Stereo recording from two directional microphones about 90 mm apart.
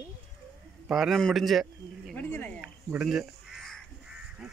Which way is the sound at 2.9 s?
5° right (ahead or behind).